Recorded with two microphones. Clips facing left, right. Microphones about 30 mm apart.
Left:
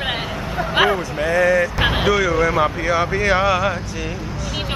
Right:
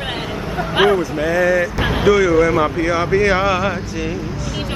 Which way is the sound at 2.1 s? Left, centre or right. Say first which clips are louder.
Right 8 dB; centre.